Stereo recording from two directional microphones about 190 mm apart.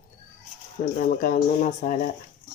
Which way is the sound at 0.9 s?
50° left (ahead or behind).